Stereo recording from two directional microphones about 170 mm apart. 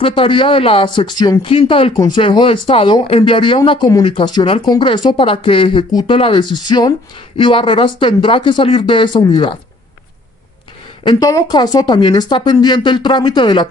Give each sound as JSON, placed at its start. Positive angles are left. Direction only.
{"t": 0.0, "sound": "speech", "side_deg": 30}
{"t": 11.1, "sound": "speech", "side_deg": 20}